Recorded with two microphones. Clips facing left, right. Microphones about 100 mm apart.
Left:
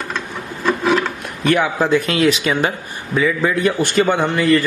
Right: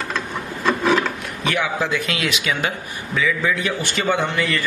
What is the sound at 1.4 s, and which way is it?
A man's voice, 45° left (ahead or behind).